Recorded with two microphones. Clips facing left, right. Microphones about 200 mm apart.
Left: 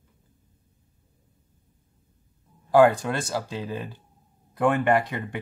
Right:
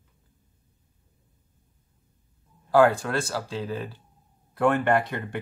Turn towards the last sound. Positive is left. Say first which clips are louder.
# left 1 dB
turn(degrees=15)  # may be behind; listen again after turning